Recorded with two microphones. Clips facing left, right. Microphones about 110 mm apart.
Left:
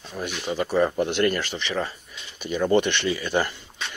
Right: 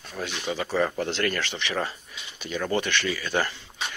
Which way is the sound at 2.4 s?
15° left (ahead or behind).